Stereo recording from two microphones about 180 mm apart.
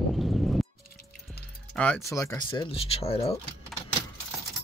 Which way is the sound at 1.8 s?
10° left (ahead or behind).